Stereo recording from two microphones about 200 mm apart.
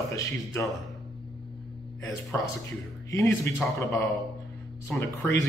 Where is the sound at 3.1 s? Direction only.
15° left (ahead or behind).